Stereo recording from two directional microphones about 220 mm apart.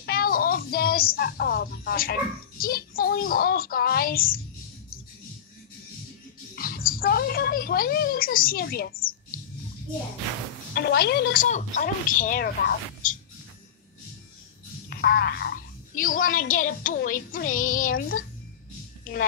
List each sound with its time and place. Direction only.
0.0 s a woman's voice: 40° left (ahead or behind)
6.5 s speech: 40° left (ahead or behind)
10.7 s a woman's voice: 45° left (ahead or behind)
14.9 s a woman's voice: 45° left (ahead or behind)